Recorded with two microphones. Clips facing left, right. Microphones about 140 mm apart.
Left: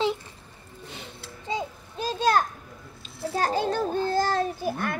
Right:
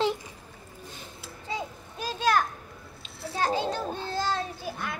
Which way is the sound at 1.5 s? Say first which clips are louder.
Left 4 dB; 30° left (ahead or behind).